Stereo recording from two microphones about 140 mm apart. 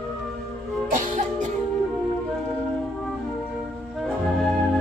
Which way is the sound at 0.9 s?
65° right (ahead or behind).